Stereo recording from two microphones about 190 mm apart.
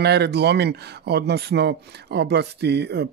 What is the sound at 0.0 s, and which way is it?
Speech, 60° right (ahead or behind).